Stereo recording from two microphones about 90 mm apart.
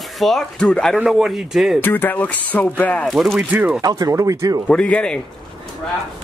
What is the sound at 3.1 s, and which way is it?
Speech, centre (ahead or behind).